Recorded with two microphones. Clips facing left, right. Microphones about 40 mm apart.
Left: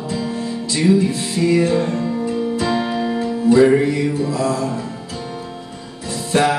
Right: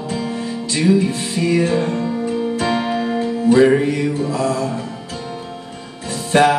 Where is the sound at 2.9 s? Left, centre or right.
Centre.